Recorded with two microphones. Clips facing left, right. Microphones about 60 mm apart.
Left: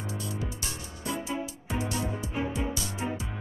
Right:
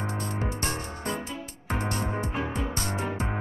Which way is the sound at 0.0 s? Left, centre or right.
Right.